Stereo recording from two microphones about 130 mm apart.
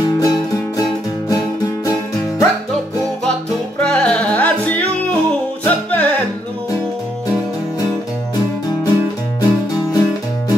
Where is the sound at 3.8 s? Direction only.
10° left (ahead or behind).